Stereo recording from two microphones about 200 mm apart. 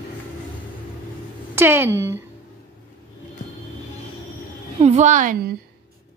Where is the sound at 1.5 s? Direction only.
10° right (ahead or behind).